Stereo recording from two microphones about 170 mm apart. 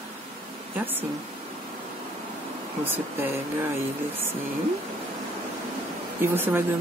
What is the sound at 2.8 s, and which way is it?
Speech, 10° right (ahead or behind).